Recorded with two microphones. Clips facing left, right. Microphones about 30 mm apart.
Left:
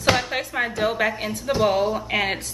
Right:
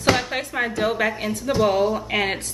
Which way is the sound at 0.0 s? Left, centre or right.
Centre.